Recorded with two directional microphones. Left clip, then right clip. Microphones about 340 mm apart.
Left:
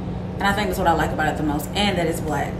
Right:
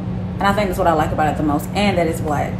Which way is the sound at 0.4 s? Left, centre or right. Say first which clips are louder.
Right 4 dB; centre.